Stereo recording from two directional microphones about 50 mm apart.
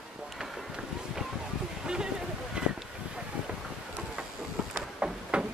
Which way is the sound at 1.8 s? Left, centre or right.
Centre.